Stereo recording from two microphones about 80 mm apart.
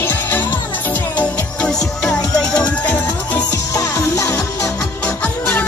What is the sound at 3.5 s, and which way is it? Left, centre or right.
Music, left.